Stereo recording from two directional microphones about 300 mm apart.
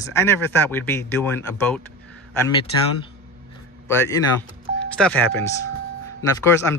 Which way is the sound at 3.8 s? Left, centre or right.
Centre.